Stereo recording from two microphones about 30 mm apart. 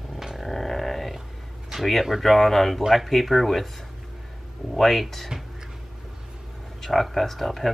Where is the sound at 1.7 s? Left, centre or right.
Centre.